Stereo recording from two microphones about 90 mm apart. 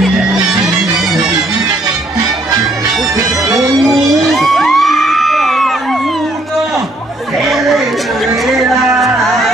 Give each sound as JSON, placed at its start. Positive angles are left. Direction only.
{"t": 3.2, "sound": "music", "side_deg": -40}
{"t": 3.8, "sound": "music", "side_deg": 0}
{"t": 7.4, "sound": "a sound", "side_deg": 0}
{"t": 8.5, "sound": "music", "side_deg": 0}